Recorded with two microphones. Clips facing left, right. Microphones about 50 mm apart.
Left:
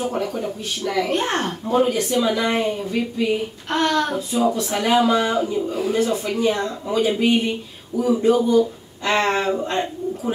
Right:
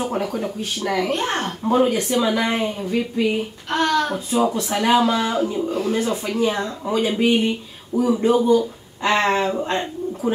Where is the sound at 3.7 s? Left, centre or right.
Centre.